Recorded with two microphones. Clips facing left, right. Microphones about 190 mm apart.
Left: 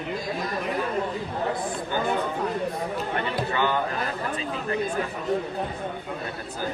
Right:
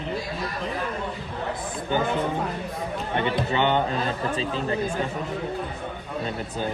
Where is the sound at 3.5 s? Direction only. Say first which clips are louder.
Right 3 dB; 25° right (ahead or behind).